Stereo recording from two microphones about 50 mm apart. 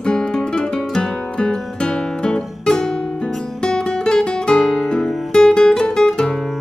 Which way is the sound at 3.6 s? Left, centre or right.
Centre.